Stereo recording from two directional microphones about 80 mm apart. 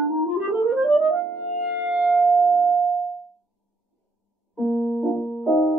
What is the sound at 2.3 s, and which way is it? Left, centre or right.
Music, left.